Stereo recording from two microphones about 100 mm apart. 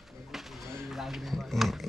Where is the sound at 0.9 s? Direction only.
Centre (ahead or behind).